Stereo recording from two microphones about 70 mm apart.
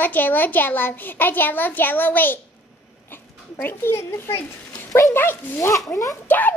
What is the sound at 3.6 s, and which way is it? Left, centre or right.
A child's voice, left.